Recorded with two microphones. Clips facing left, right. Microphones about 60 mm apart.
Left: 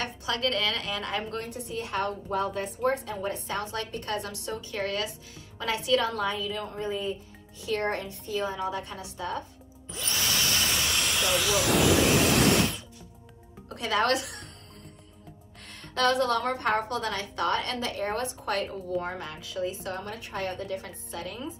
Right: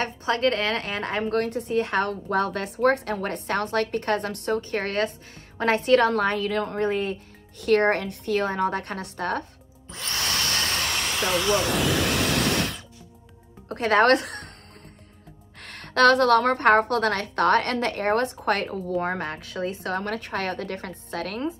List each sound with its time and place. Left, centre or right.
0.0 s a woman's voice: right
9.9 s a sound: right
11.5 s a woman's voice: right
12.4 s spray: right
13.7 s speech: right
15.6 s a woman's voice: right